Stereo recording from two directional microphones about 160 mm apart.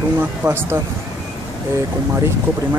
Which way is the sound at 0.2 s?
15° right (ahead or behind).